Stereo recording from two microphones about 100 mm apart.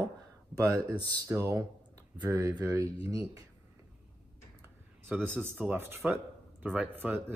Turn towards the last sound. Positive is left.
turn(degrees=-20)  # may be behind; listen again after turning